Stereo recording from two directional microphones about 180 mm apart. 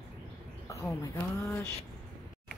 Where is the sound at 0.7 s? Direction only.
15° left (ahead or behind).